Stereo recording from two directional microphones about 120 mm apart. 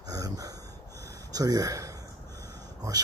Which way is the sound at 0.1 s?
30° right (ahead or behind).